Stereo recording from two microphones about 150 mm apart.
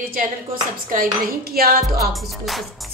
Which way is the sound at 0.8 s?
70° right (ahead or behind).